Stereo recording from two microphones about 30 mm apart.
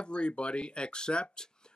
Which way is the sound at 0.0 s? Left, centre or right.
Left.